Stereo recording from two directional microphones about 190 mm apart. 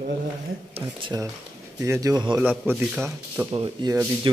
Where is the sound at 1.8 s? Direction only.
15° right (ahead or behind).